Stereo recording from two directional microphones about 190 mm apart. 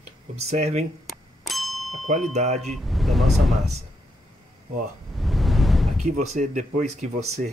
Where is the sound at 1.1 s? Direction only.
Centre (ahead or behind).